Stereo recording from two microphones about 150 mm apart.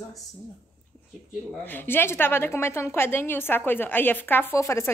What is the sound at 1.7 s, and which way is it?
A woman's voice, 15° left (ahead or behind).